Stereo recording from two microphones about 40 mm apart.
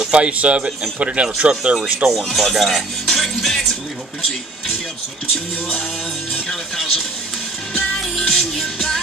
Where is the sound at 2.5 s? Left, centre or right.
Centre.